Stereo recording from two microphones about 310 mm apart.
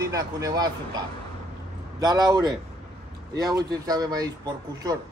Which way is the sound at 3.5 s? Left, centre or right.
Centre.